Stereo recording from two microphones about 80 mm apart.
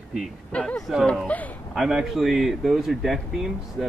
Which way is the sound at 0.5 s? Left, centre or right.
Centre.